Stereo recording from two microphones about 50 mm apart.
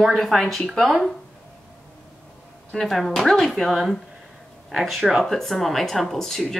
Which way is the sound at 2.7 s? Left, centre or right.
Centre.